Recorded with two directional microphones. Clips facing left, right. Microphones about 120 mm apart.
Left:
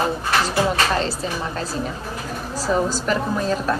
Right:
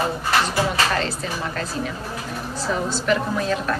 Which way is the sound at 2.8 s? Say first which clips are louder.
Even; 40° left (ahead or behind).